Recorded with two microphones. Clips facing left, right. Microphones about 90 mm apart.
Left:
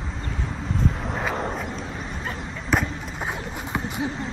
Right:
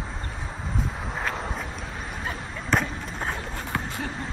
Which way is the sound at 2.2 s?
5° left (ahead or behind).